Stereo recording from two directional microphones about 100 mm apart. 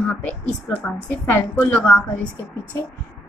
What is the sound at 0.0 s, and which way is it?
A woman's voice, 15° left (ahead or behind).